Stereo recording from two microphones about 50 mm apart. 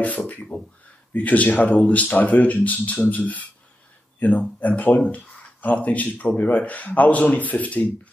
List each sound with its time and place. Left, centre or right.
0.5 s speech: left